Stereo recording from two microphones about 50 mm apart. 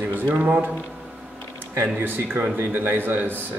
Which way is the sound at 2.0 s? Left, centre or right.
Right.